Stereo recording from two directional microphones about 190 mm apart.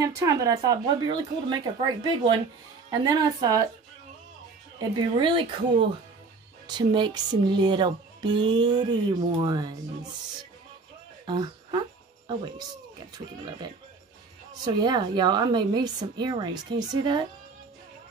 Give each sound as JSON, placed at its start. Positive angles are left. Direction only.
{"t": 0.0, "sound": "a woman's voice", "side_deg": -20}
{"t": 4.7, "sound": "speech", "side_deg": -25}
{"t": 11.2, "sound": "speech", "side_deg": -20}
{"t": 14.6, "sound": "speech", "side_deg": -20}